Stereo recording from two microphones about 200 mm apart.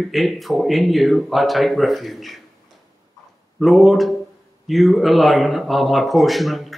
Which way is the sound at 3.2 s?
20° left (ahead or behind).